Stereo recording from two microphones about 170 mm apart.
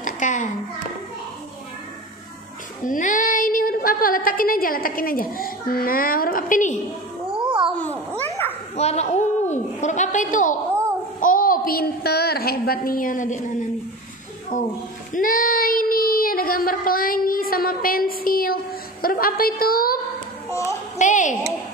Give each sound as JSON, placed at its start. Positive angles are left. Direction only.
{"t": 0.0, "sound": "a sound", "side_deg": 45}
{"t": 2.8, "sound": "a woman's voice", "side_deg": 50}
{"t": 8.7, "sound": "a woman's voice", "side_deg": 40}
{"t": 14.5, "sound": "a woman's voice", "side_deg": 50}
{"t": 15.1, "sound": "child singing", "side_deg": 55}
{"t": 21.0, "sound": "a woman's voice", "side_deg": 45}